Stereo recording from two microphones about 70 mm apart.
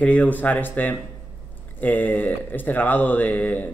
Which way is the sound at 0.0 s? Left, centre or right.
Left.